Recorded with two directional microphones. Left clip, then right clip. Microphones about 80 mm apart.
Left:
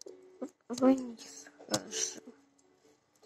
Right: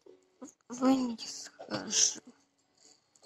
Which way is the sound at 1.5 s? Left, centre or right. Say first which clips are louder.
Left 4 dB; right.